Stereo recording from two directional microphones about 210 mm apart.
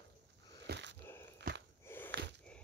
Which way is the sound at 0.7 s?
55° right (ahead or behind).